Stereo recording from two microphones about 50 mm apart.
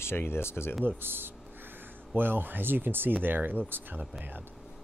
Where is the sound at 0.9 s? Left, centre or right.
Right.